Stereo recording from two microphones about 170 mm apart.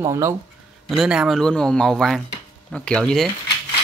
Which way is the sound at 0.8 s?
5° right (ahead or behind).